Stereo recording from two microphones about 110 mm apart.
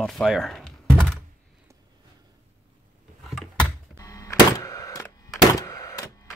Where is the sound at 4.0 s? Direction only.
30° left (ahead or behind).